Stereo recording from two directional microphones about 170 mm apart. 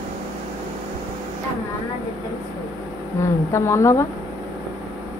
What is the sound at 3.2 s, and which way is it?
Speech, 15° left (ahead or behind).